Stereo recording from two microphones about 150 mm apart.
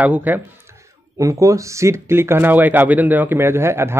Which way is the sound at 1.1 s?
20° right (ahead or behind).